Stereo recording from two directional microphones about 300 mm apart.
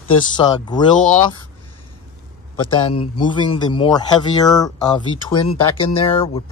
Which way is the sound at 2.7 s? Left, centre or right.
Centre.